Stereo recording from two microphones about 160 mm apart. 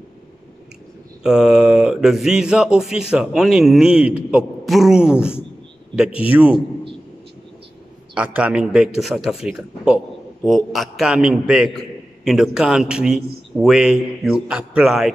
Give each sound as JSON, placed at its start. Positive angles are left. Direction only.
{"t": 1.2, "sound": "a man's voice", "side_deg": -5}
{"t": 8.1, "sound": "a man's voice", "side_deg": -10}